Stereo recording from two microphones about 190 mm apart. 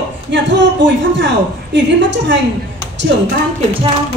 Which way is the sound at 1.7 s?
70° right (ahead or behind).